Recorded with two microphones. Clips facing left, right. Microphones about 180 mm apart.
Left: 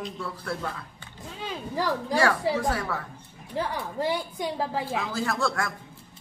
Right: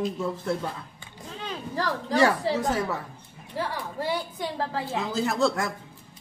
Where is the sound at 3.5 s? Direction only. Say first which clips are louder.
Left 1 dB; 15° left (ahead or behind).